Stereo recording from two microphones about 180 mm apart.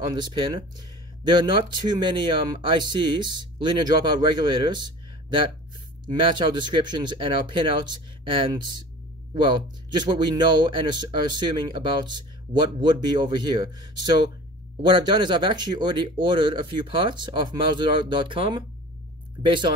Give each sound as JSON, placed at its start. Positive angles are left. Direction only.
{"t": 0.1, "sound": "speech", "side_deg": -25}
{"t": 10.0, "sound": "speech", "side_deg": -25}